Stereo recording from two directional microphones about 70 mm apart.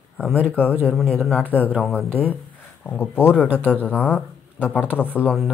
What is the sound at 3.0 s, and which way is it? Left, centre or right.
Speech, left.